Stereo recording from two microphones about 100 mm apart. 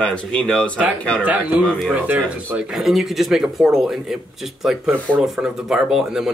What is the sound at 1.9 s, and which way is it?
Speech, 10° right (ahead or behind).